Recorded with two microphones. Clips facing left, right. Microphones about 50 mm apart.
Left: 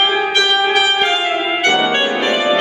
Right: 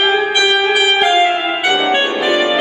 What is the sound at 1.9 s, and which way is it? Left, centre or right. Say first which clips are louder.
Brass instrument: right 1 dB; centre.